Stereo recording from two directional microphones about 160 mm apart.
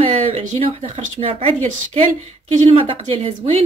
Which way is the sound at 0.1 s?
40° right (ahead or behind).